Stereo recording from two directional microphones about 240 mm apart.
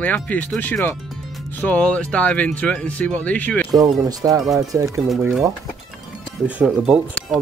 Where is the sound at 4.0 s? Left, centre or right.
Centre.